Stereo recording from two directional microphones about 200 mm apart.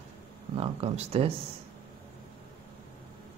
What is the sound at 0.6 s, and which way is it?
Speech, 30° right (ahead or behind).